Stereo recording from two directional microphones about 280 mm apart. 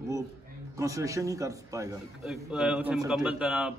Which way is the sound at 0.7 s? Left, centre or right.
Centre.